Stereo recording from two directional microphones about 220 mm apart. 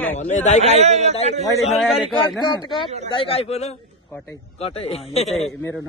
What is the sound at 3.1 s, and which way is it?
Speech, 25° left (ahead or behind).